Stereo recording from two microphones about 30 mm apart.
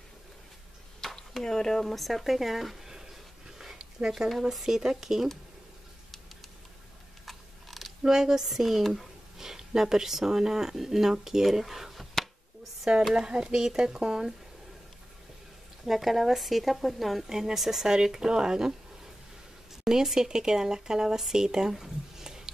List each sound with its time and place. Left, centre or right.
1.0 s a sound: centre
1.4 s speech: centre
2.0 s speech: centre
2.9 s a sound: centre
4.3 s speech: centre
7.2 s a sound: centre
8.0 s speech: centre
9.4 s speech: centre
13.1 s speech: right
15.8 s speech: centre
17.3 s speech: centre
19.8 s a woman's voice: centre
21.7 s a sound: centre